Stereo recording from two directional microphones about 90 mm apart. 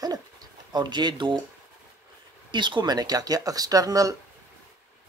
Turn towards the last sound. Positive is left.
turn(degrees=-40)  # may be behind; listen again after turning